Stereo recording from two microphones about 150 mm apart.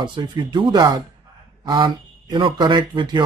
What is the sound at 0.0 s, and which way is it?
Speech, 30° right (ahead or behind).